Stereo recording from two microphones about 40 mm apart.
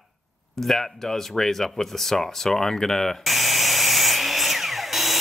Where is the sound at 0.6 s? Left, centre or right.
Centre.